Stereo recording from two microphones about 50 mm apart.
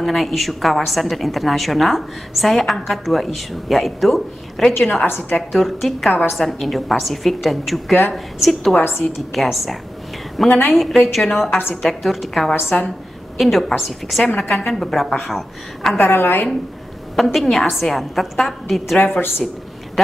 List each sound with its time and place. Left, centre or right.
0.0 s a woman's voice: centre
8.7 s a woman's voice: left
9.3 s a woman's voice: centre
16.0 s a woman's voice: left
17.1 s a woman's voice: centre
19.1 s a woman's voice: left